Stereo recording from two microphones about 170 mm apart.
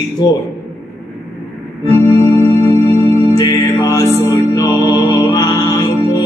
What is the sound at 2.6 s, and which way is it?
Music, 30° right (ahead or behind).